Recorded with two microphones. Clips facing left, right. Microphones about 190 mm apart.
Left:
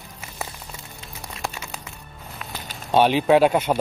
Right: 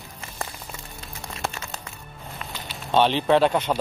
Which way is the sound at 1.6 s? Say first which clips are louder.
Even; 5° left (ahead or behind).